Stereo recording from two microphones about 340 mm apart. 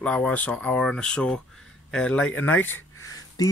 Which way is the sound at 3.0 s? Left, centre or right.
Centre.